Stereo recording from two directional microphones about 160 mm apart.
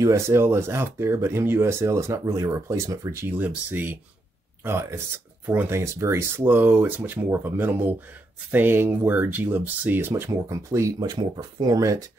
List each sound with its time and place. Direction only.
0.0 s speech: 15° right (ahead or behind)